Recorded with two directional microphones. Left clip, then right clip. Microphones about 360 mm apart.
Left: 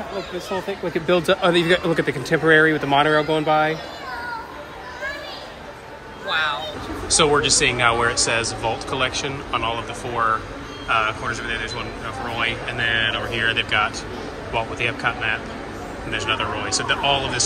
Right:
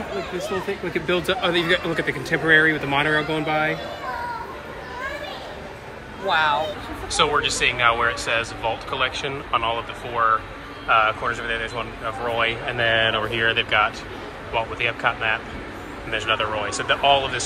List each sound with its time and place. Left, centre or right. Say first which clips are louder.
0.9 s speech: left 4 dB; left
6.2 s a man's voice: right 3 dB; centre